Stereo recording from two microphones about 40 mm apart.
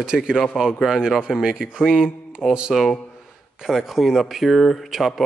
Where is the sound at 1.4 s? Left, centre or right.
Centre.